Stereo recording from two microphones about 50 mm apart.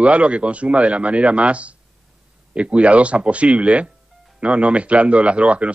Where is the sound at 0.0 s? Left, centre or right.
Right.